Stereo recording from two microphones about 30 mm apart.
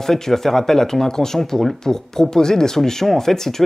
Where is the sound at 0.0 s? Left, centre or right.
Centre.